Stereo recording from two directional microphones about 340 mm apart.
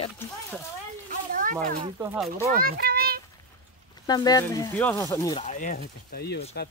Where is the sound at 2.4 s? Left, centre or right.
Right.